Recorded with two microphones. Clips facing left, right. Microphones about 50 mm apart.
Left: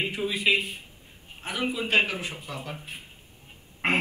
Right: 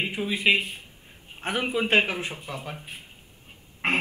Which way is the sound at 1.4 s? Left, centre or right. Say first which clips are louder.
Right 3 dB; right.